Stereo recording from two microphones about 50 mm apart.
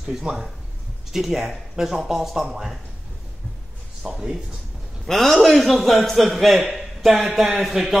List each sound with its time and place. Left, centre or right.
0.2 s a man's voice: centre
4.0 s speech: centre
5.0 s a man's voice: centre